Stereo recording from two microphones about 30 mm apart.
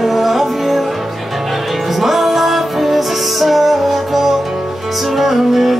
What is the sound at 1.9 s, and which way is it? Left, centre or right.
Music, centre.